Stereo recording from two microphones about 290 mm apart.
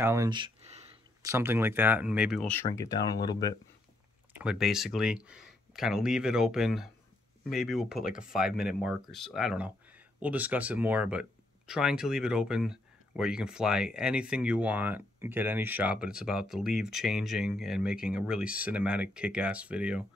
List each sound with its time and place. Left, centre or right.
0.0 s speech: centre
1.2 s speech: centre
4.4 s speech: centre